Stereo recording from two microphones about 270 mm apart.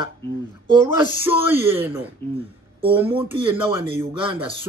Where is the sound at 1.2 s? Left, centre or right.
Centre.